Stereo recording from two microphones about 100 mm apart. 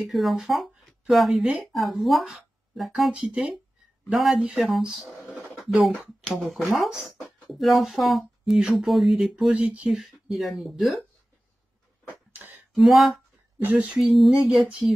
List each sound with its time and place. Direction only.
0.1 s speech: centre (ahead or behind)
1.4 s speech: 15° right (ahead or behind)
1.7 s speech: centre (ahead or behind)
8.5 s speech: 10° right (ahead or behind)
12.3 s a sound: 20° right (ahead or behind)
12.7 s speech: centre (ahead or behind)